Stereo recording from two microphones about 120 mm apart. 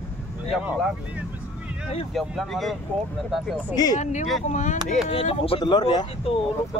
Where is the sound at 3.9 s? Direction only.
85° left.